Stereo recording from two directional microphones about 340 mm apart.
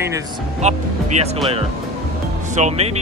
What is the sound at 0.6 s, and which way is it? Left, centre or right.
Speech, centre.